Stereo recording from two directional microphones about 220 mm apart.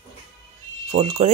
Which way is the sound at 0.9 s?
35° right (ahead or behind).